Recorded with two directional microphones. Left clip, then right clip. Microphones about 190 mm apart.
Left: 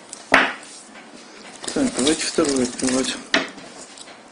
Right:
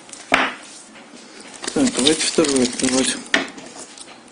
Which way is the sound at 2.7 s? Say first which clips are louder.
Right 3 dB; 30° right (ahead or behind).